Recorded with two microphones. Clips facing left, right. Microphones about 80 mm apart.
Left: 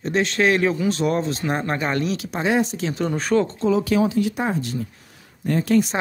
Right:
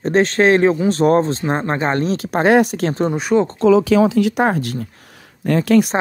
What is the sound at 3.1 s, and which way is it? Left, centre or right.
Speech, centre.